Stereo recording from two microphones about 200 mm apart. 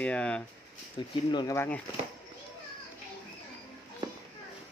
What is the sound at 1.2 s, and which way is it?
Speech, 20° left (ahead or behind).